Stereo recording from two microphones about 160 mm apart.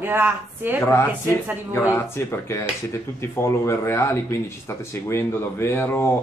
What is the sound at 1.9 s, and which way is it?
Speech, 15° left (ahead or behind).